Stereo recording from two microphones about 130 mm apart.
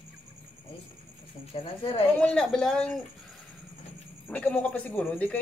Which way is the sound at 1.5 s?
45° left (ahead or behind).